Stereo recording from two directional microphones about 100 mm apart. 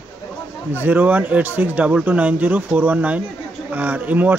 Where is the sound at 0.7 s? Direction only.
20° right (ahead or behind).